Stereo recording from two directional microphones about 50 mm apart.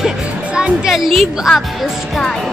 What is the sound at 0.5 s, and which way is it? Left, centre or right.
Music, centre.